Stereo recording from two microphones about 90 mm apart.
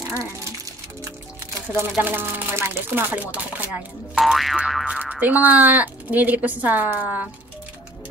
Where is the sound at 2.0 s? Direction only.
20° right (ahead or behind).